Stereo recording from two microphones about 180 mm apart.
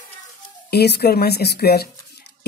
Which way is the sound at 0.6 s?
65° left (ahead or behind).